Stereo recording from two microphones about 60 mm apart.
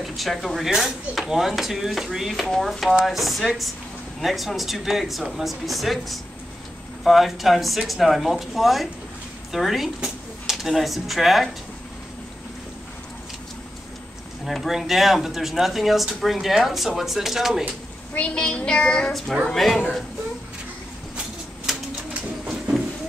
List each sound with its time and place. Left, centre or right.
0.0 s speech: centre
9.9 s drawer open or close: centre
10.5 s speech: centre
14.4 s speech: centre
18.3 s child singing: centre
19.4 s speech: centre
21.7 s bird: centre